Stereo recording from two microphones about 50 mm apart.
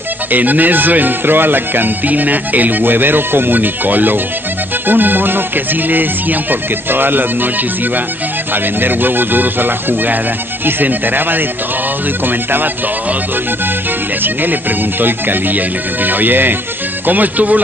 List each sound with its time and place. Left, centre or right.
0.3 s speech: right
8.8 s speech: right
14.2 s speech: right